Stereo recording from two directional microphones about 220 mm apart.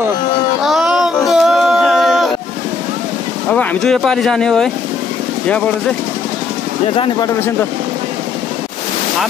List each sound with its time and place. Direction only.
0.6 s a sound: centre (ahead or behind)
3.4 s speech: 5° left (ahead or behind)
6.9 s speech: 25° left (ahead or behind)